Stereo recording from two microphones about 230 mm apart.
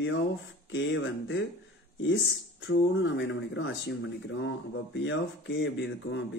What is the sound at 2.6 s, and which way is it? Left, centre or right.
Speech, left.